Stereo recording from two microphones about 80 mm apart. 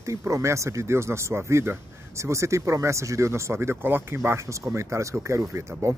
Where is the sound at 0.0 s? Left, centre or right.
Right.